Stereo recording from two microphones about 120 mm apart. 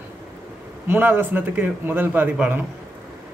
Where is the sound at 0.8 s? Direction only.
20° right (ahead or behind).